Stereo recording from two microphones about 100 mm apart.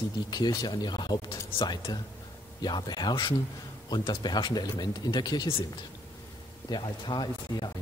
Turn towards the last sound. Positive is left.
turn(degrees=45)  # may be behind; listen again after turning